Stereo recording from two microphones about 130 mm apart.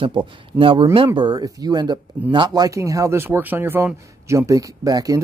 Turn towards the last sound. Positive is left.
turn(degrees=-25)  # may be behind; listen again after turning